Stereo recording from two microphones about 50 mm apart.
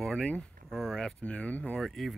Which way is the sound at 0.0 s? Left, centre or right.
Centre.